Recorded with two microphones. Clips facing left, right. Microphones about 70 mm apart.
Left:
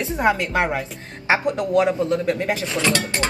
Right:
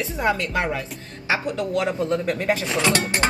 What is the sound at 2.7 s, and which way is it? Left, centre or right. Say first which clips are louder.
Speech: left 1 dB; right.